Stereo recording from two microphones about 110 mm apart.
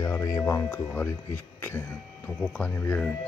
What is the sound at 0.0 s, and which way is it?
Speech, 30° left (ahead or behind).